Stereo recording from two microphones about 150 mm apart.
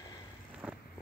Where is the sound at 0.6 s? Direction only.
5° right (ahead or behind).